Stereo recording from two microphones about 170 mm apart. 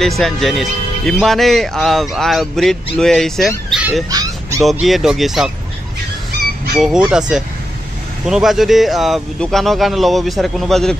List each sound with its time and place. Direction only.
0.0 s a man's voice: centre (ahead or behind)
4.1 s dog: 20° right (ahead or behind)
4.6 s a man's voice: centre (ahead or behind)
6.8 s a man's voice: 5° right (ahead or behind)